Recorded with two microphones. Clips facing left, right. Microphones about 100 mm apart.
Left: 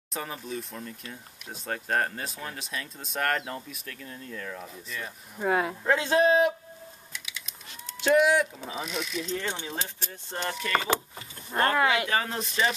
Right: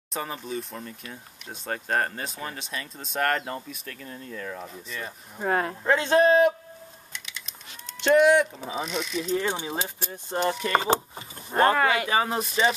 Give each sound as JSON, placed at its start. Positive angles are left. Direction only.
{"t": 0.1, "sound": "speech", "side_deg": 0}
{"t": 7.1, "sound": "a sound", "side_deg": 5}
{"t": 8.0, "sound": "speech", "side_deg": 5}
{"t": 9.2, "sound": "speech", "side_deg": -10}
{"t": 10.6, "sound": "speech", "side_deg": -30}